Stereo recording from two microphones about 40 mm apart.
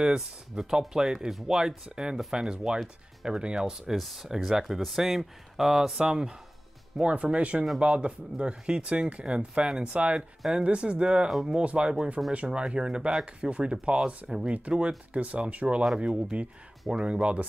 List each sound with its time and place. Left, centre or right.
0.0 s speech: centre
3.9 s speech: centre
4.3 s speech: centre
5.9 s speech: centre
15.1 s speech: right